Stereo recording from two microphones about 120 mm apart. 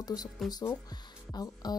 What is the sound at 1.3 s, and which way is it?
Speech, 35° left (ahead or behind).